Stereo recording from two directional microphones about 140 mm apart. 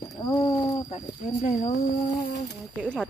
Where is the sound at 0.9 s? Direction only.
50° left (ahead or behind).